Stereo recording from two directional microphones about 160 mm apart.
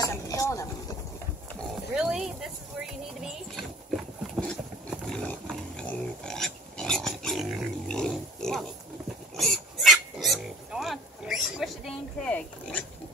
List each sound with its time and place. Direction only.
0.0 s vehicle: 20° left (ahead or behind)
2.0 s a sound: 5° right (ahead or behind)
5.1 s pig: 5° left (ahead or behind)